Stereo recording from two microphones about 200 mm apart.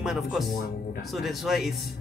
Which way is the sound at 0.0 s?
Centre (ahead or behind).